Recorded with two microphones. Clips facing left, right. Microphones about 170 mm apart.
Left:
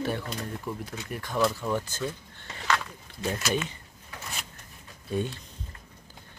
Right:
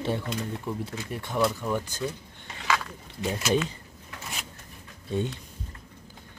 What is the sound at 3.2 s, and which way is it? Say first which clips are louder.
Speech: right 3 dB; 20° right (ahead or behind).